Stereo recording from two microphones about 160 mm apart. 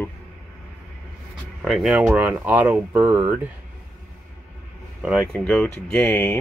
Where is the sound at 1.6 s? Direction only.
5° right (ahead or behind).